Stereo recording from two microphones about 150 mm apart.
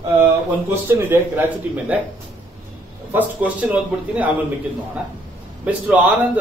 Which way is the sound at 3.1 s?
10° right (ahead or behind).